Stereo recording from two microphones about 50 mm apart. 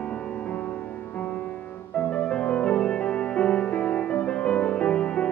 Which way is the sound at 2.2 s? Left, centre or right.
Left.